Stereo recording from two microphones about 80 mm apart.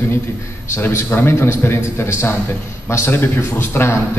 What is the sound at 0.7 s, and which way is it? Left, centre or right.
A man's voice, left.